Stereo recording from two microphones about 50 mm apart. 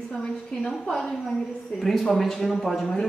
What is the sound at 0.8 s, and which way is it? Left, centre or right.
Speech, centre.